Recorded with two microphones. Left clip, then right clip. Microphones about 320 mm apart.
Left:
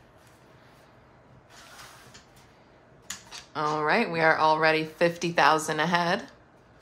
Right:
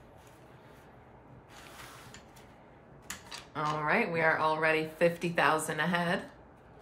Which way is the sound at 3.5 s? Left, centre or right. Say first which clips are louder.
Left 5 dB; centre.